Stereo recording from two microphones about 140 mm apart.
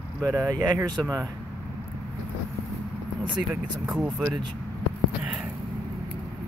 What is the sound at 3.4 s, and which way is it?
Speech, 5° right (ahead or behind).